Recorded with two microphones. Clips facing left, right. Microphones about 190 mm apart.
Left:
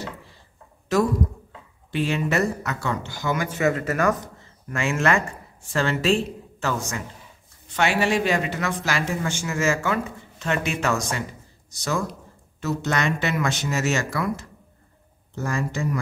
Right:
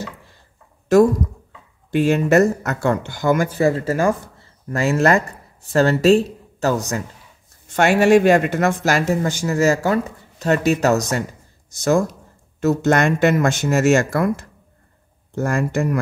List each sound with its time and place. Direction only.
1.9 s speech: 45° right (ahead or behind)